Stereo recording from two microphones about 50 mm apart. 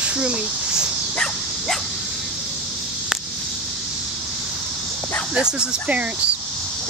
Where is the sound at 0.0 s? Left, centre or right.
Centre.